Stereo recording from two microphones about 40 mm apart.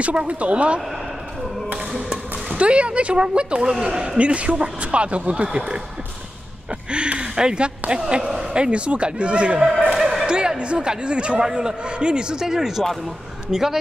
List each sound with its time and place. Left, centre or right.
0.0 s speech: right
2.5 s a man's voice: right
4.2 s speech: right
6.9 s speech: right
9.9 s basketball bounce: centre
10.2 s a man's voice: centre